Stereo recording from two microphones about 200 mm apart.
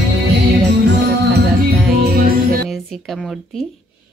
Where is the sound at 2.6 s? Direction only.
Centre (ahead or behind).